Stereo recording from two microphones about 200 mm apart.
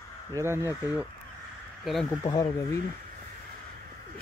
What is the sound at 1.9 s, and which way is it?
Speech, centre (ahead or behind).